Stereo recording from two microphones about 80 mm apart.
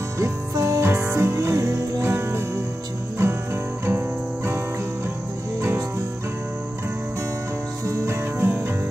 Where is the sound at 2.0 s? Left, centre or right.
Right.